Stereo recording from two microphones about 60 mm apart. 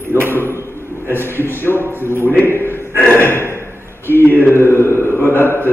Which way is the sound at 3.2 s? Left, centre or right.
Left.